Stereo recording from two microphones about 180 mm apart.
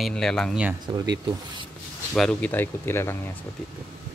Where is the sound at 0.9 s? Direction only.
25° right (ahead or behind).